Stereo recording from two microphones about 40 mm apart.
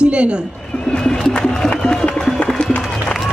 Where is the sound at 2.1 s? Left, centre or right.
Centre.